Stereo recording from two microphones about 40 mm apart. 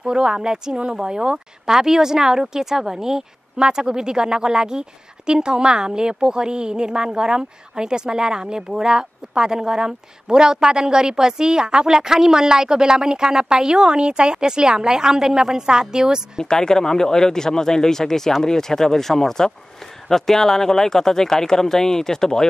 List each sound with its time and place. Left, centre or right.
0.0 s a woman's voice: centre
16.3 s speech: centre